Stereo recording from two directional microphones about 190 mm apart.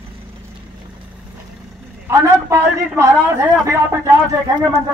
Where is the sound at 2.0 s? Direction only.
15° right (ahead or behind).